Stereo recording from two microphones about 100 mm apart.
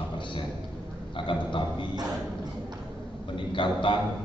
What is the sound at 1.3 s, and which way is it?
Speech, 55° left (ahead or behind).